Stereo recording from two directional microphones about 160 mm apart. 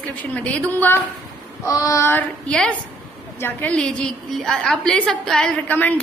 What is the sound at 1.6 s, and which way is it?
A woman's voice, 20° left (ahead or behind).